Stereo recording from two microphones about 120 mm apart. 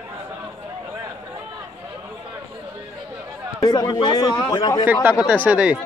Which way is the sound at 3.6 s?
35° left (ahead or behind).